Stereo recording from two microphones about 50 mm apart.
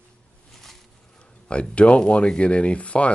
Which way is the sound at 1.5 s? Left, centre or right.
Left.